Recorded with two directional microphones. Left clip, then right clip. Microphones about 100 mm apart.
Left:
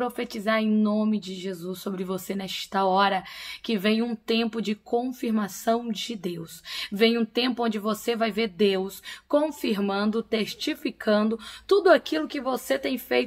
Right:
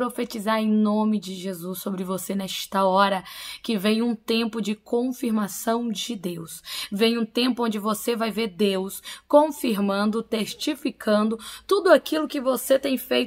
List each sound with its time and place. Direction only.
0.0 s speech: 45° right (ahead or behind)